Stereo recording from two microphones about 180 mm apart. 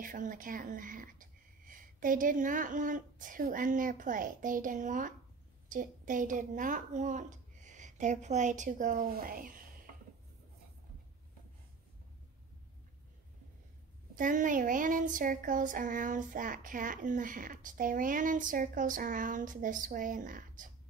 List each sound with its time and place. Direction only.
0.0 s speech: 50° right (ahead or behind)
14.1 s speech: 45° right (ahead or behind)